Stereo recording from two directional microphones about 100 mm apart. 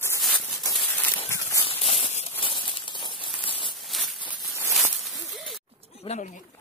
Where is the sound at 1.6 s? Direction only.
70° left (ahead or behind); by 2.3 s 85° left.